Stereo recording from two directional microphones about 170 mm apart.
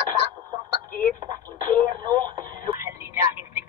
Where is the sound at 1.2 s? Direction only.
25° right (ahead or behind).